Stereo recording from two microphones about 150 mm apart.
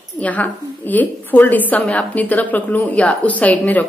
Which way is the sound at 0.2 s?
10° left (ahead or behind).